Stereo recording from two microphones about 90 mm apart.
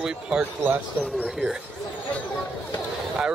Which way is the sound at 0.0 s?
15° right (ahead or behind).